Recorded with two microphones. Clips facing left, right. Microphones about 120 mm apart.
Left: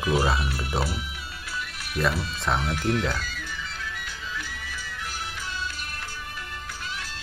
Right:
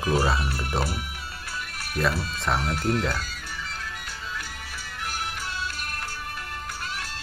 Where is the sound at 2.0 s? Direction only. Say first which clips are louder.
Even; centre (ahead or behind).